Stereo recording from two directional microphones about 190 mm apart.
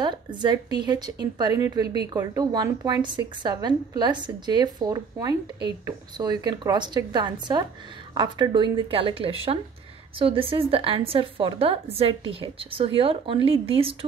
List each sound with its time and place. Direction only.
0.0 s speech: 25° right (ahead or behind)